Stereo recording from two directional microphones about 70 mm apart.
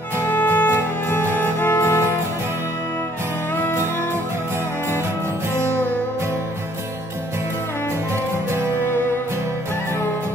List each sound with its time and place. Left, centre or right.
0.3 s music: left
3.5 s music: left